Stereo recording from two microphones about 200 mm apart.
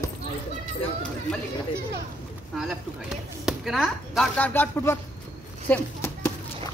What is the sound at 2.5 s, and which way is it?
Speech, centre (ahead or behind).